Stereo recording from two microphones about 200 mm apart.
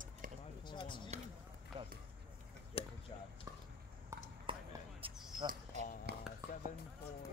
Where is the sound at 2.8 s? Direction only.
30° left (ahead or behind).